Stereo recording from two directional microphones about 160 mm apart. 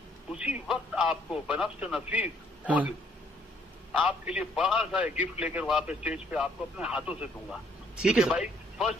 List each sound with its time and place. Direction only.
0.3 s speech: 5° right (ahead or behind)
4.0 s a man's voice: 5° right (ahead or behind)